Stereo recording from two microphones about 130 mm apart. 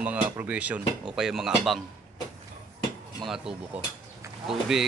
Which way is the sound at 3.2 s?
5° right (ahead or behind).